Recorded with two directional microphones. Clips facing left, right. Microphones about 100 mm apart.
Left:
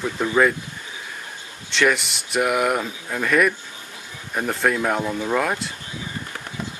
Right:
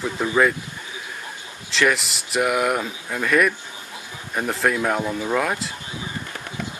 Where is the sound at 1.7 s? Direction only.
Centre (ahead or behind).